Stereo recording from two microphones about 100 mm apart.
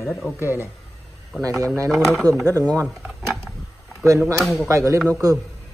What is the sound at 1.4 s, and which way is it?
A woman's voice, 35° right (ahead or behind).